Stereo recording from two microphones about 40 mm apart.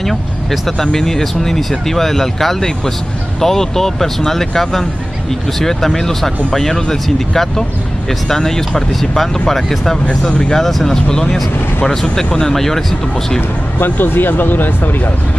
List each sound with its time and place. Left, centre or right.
0.0 s speech: centre
10.0 s speech: left
10.5 s speech: centre
11.1 s speech: centre
13.7 s speech: left